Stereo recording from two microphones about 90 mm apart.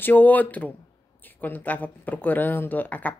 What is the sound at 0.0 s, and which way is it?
Speech, 20° left (ahead or behind).